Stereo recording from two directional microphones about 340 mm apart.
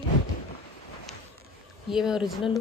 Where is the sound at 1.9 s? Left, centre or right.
Centre.